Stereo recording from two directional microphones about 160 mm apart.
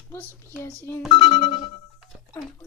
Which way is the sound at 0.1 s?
15° left (ahead or behind).